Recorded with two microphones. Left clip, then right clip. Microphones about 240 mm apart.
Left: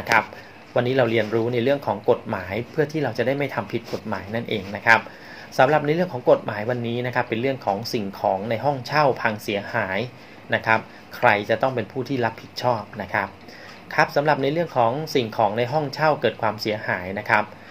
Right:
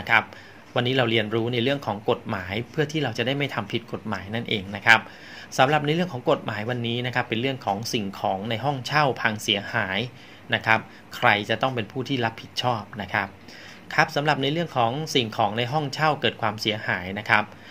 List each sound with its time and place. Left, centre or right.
0.7 s speech: right